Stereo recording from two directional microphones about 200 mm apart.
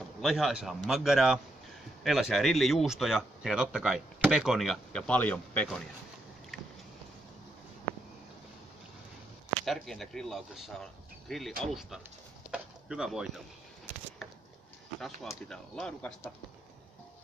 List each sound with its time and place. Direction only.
0.2 s speech: centre (ahead or behind)
9.7 s speech: centre (ahead or behind)
12.4 s a sound: 5° right (ahead or behind)
15.4 s speech: 5° left (ahead or behind)